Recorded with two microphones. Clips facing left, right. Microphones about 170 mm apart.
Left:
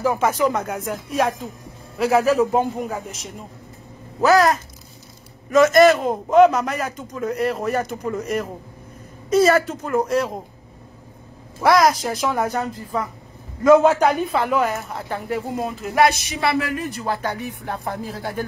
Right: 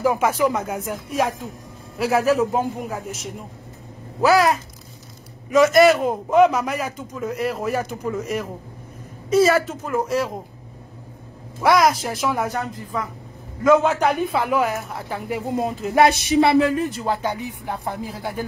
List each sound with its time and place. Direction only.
0.0 s a man's voice: 10° right (ahead or behind)
11.6 s a man's voice: centre (ahead or behind)
13.8 s a man's voice: centre (ahead or behind)
15.6 s speech: 30° right (ahead or behind)
17.0 s speech: 15° right (ahead or behind)